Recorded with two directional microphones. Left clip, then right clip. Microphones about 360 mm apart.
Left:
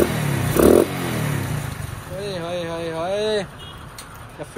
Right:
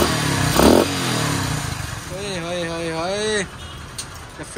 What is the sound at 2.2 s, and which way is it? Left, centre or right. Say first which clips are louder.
Speech: right 1 dB; centre.